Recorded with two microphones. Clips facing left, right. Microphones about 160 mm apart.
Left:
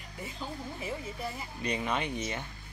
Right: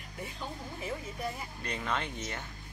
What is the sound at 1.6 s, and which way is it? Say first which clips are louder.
Speech: left 4 dB; 15° left (ahead or behind).